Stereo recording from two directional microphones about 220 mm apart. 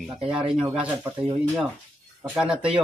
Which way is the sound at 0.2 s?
25° right (ahead or behind).